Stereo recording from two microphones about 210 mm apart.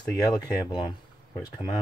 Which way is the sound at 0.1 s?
20° left (ahead or behind).